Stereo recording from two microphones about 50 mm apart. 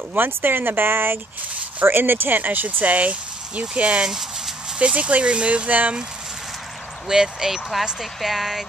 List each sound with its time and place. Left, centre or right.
0.1 s speech: right
4.0 s a sound: centre
4.7 s speech: right
7.1 s speech: centre